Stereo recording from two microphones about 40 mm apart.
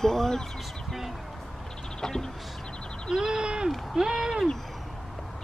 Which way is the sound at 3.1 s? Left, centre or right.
Centre.